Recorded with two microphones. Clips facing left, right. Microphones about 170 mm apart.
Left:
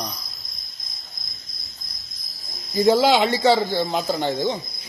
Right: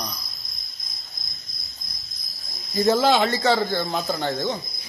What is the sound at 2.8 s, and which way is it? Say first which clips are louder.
Speech: left 2 dB; 15° left (ahead or behind).